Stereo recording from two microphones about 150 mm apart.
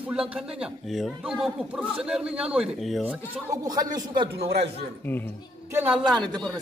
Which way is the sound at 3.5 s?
25° right (ahead or behind).